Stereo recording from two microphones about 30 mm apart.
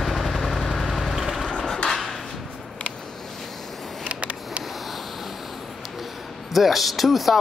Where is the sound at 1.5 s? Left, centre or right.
Centre.